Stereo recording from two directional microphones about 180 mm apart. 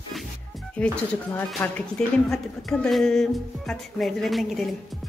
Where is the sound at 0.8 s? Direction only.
5° left (ahead or behind).